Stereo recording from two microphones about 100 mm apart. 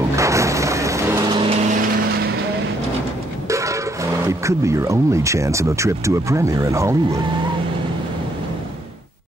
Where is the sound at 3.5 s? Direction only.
30° right (ahead or behind).